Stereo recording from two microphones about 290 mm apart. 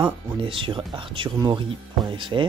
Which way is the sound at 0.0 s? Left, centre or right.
Centre.